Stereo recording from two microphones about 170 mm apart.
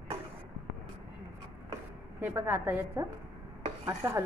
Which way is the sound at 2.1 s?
10° right (ahead or behind).